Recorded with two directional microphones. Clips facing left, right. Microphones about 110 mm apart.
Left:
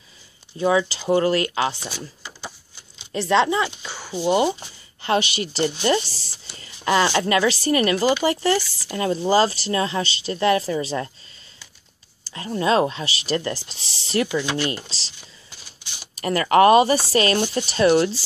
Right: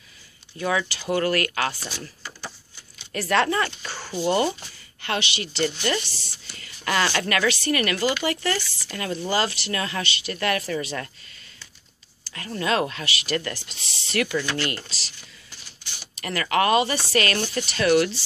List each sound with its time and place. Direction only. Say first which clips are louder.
0.6 s speech: left 6 dB; 25° left (ahead or behind)
1.9 s a sound: left 2 dB; 20° left (ahead or behind)
3.0 s speech: left 3 dB; 20° left (ahead or behind)
5.1 s speech: left 6 dB; 40° left (ahead or behind)
12.5 s speech: left 5 dB; 30° left (ahead or behind)
14.3 s speech: left 3 dB; 20° left (ahead or behind)
14.9 s speech: left 1 dB; 30° left (ahead or behind)
16.2 s speech: left 7 dB; 35° left (ahead or behind)